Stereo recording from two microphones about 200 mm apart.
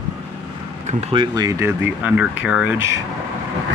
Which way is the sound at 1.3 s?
15° right (ahead or behind).